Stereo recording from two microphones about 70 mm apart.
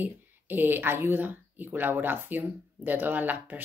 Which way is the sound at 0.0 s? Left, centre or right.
Right.